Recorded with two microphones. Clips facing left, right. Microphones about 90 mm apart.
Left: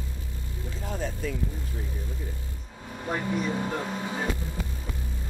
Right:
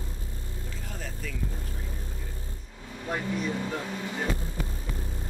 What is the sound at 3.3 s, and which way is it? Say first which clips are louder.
Vehicle: left 3 dB; 20° left (ahead or behind).